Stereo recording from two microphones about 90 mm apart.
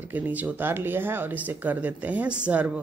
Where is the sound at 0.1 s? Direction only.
15° right (ahead or behind).